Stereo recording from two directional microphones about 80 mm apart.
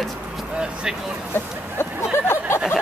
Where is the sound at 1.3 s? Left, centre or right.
Left.